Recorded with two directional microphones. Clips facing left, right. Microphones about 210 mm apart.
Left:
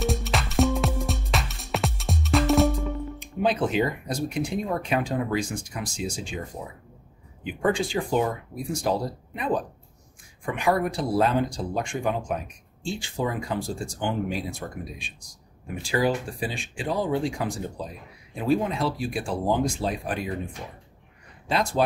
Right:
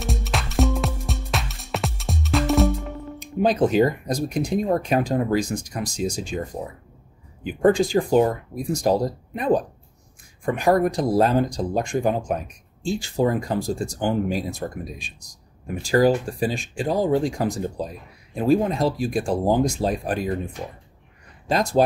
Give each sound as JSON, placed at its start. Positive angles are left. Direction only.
{"t": 0.0, "sound": "music", "side_deg": 0}
{"t": 3.2, "sound": "speech", "side_deg": -40}
{"t": 7.4, "sound": "speech", "side_deg": -40}
{"t": 21.5, "sound": "speech", "side_deg": -40}